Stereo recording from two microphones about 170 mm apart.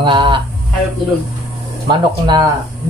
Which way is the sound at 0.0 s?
30° right (ahead or behind).